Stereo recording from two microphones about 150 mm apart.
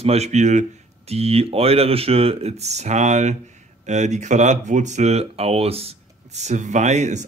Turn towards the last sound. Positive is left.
turn(degrees=-50)  # may be behind; listen again after turning